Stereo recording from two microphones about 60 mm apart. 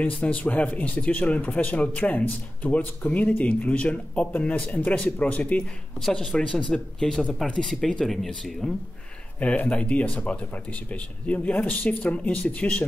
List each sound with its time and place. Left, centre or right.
0.0 s speech: left
5.9 s speech: centre
8.0 s speech: centre
9.4 s speech: left